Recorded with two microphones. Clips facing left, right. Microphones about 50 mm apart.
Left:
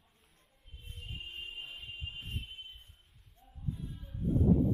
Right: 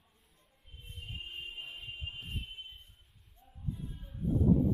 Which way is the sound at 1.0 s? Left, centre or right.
Centre.